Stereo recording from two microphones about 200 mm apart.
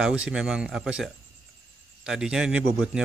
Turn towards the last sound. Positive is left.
turn(degrees=-5)  # may be behind; listen again after turning